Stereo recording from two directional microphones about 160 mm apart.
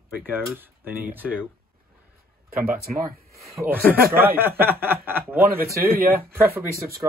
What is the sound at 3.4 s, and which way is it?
Speech, 15° right (ahead or behind).